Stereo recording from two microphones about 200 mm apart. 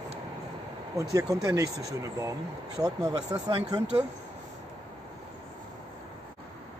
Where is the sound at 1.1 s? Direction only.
15° right (ahead or behind).